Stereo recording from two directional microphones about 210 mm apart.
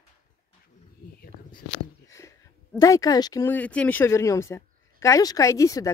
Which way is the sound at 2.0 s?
15° left (ahead or behind).